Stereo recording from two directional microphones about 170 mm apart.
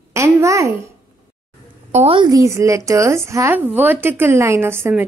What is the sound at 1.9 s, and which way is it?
A woman's voice, 35° right (ahead or behind).